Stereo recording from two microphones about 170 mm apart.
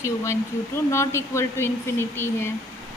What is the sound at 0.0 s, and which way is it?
Speech, 15° left (ahead or behind).